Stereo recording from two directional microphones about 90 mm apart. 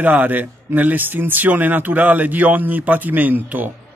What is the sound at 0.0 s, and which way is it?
Speech, 20° right (ahead or behind).